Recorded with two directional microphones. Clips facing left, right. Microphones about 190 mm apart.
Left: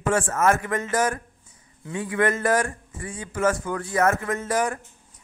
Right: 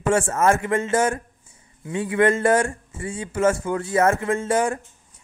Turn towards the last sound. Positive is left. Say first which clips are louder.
# right 3 dB
turn(degrees=-25)  # may be behind; listen again after turning